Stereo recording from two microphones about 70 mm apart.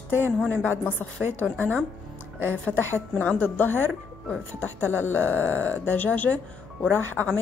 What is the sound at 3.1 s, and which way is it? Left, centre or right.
Speech, left.